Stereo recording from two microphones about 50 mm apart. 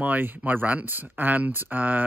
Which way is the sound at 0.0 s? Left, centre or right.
Right.